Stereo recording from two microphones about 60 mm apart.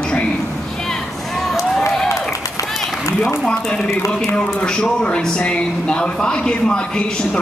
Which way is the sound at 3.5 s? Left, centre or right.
Centre.